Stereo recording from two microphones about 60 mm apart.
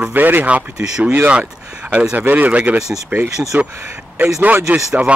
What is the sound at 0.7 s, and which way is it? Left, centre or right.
Speech, centre.